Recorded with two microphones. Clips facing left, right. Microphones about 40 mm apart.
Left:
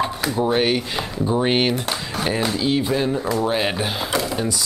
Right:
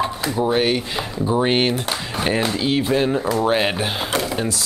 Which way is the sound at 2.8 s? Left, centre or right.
Right.